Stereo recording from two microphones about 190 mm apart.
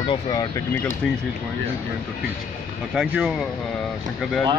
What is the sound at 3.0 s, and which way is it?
Speech, centre (ahead or behind).